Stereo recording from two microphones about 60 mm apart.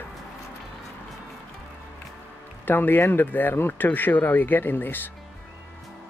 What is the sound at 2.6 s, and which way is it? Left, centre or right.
Speech, left.